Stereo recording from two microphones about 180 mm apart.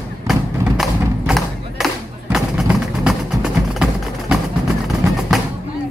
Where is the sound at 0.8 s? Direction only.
Centre (ahead or behind).